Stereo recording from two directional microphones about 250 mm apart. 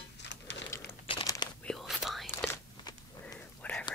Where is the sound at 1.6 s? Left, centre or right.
Centre.